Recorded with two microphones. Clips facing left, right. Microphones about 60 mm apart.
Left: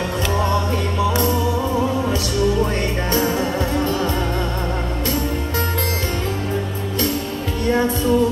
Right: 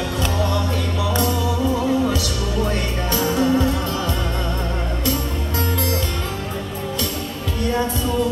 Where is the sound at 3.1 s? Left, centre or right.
Left.